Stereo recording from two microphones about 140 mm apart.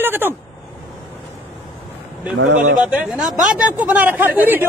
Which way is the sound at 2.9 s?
5° right (ahead or behind).